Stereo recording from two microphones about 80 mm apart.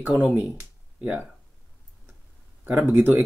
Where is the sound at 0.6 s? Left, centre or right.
Right.